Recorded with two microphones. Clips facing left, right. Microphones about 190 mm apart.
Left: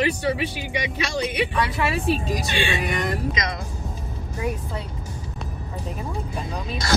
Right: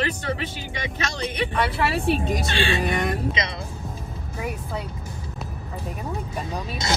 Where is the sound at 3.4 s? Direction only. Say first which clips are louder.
Even; 30° right (ahead or behind).